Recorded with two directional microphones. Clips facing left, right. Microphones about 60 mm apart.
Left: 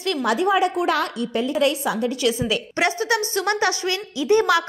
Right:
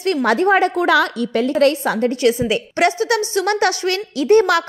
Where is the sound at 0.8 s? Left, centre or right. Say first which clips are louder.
Right 6 dB; right.